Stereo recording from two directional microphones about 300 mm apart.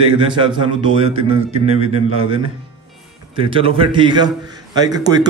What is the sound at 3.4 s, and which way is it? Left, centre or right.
A man's voice, centre.